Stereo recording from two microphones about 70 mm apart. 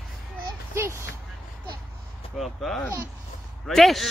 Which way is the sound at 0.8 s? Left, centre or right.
Right.